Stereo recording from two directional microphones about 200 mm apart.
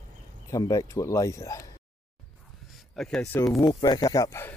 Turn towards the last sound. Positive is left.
turn(degrees=10)  # may be behind; listen again after turning